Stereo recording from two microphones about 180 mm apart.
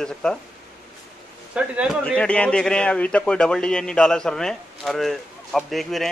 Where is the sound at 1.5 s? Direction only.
5° right (ahead or behind).